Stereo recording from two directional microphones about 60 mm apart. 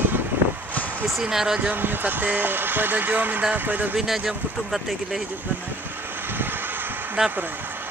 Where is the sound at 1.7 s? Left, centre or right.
Right.